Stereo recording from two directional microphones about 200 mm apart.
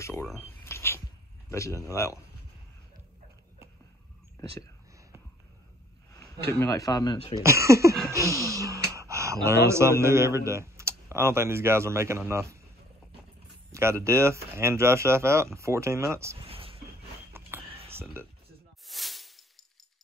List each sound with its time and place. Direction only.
0.0 s a man's voice: 15° left (ahead or behind)
0.3 s a sound: 10° left (ahead or behind)
1.5 s a man's voice: 15° left (ahead or behind)
6.6 s a man's voice: 15° left (ahead or behind)
7.3 s speech: 15° right (ahead or behind)
13.7 s speech: 15° right (ahead or behind)
16.4 s a sound: 30° right (ahead or behind)
18.9 s snake: centre (ahead or behind)